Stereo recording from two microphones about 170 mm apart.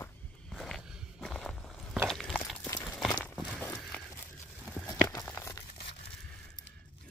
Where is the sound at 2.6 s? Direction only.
10° left (ahead or behind).